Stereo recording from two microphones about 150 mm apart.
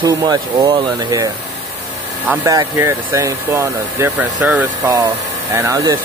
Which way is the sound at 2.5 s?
20° right (ahead or behind).